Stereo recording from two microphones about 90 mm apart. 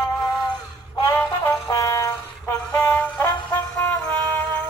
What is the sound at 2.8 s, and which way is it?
Music, 20° left (ahead or behind).